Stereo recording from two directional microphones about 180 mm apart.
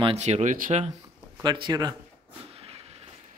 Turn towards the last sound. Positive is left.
turn(degrees=-35)  # may be behind; listen again after turning